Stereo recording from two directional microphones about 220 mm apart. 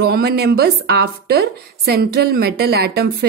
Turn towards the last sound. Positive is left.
turn(degrees=-45)  # may be behind; listen again after turning